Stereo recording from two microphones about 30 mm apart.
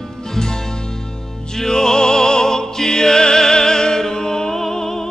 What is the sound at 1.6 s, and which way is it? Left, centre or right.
Music, left.